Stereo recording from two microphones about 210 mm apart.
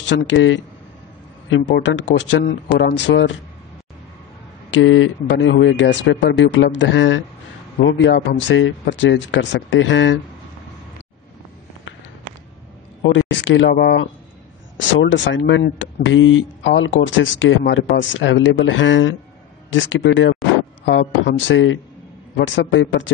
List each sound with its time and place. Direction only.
0.1 s speech: 60° left (ahead or behind)
4.6 s speech: 65° left (ahead or behind)
13.0 s speech: 60° left (ahead or behind)